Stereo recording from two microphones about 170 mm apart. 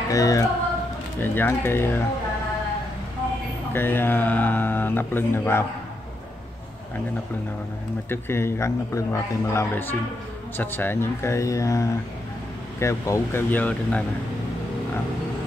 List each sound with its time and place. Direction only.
0.1 s speech: 20° left (ahead or behind)
3.7 s speech: 15° left (ahead or behind)
8.1 s speech: 15° left (ahead or behind)